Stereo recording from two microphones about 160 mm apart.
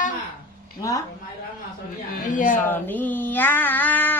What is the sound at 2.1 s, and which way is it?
Laughter, 55° left (ahead or behind).